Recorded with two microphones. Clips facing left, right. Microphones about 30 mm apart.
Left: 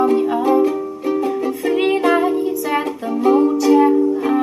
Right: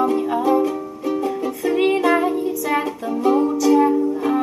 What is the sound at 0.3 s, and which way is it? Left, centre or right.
Music, centre.